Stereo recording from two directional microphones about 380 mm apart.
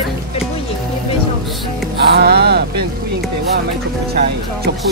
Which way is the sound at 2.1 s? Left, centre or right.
Right.